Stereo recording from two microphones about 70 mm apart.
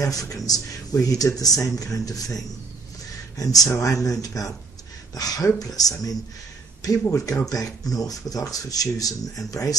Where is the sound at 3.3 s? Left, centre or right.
Left.